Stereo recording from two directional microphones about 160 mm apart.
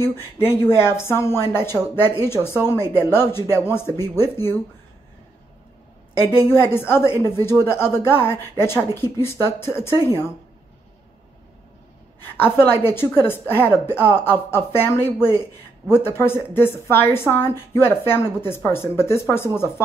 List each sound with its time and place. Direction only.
0.0 s a woman's voice: 15° left (ahead or behind)
6.4 s a woman's voice: 15° left (ahead or behind)
12.5 s a woman's voice: 15° left (ahead or behind)